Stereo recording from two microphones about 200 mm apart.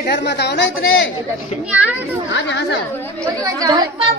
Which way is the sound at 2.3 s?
65° left (ahead or behind).